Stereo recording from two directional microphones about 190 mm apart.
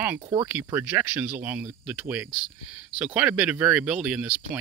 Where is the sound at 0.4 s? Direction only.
15° right (ahead or behind).